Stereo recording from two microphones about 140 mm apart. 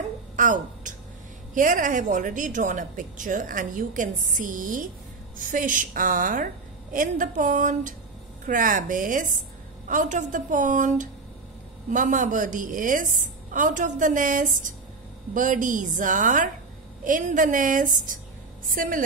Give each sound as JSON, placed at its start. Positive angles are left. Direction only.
{"t": 0.4, "sound": "a woman's voice", "side_deg": -65}